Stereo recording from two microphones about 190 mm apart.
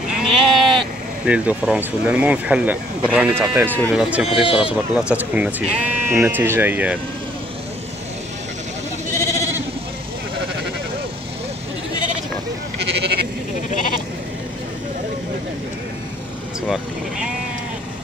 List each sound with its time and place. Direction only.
0.2 s sheep: centre (ahead or behind)
1.2 s speech: 5° right (ahead or behind)
4.3 s speech: 30° left (ahead or behind)
4.9 s speech: 5° right (ahead or behind)
9.1 s sheep: 15° left (ahead or behind)
16.6 s vehicle: centre (ahead or behind)